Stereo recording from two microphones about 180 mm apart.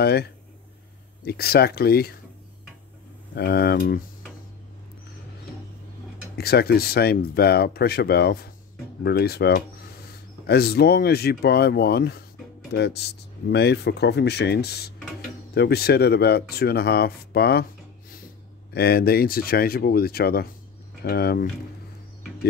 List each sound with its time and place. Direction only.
0.0 s speech: 65° left (ahead or behind)
3.3 s speech: 60° left (ahead or behind)
6.3 s speech: 60° left (ahead or behind)
18.7 s speech: 60° left (ahead or behind)